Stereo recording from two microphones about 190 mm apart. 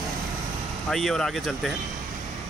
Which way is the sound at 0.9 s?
Centre (ahead or behind).